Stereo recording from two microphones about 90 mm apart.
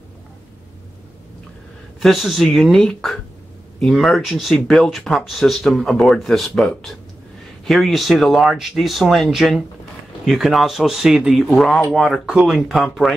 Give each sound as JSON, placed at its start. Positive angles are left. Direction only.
{"t": 2.0, "sound": "speech", "side_deg": 0}
{"t": 11.4, "sound": "speech", "side_deg": 5}